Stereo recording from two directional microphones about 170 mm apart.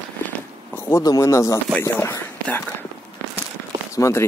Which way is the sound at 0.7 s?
20° left (ahead or behind).